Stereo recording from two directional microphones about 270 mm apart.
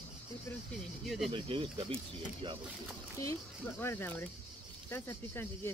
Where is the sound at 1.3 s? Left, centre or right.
Centre.